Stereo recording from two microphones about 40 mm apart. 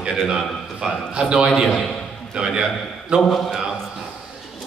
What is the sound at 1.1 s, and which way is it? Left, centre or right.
Speech, centre.